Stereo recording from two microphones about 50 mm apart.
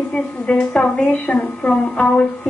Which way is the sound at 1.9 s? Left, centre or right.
Left.